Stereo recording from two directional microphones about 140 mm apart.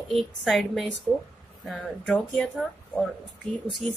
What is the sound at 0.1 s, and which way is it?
Speech, centre (ahead or behind).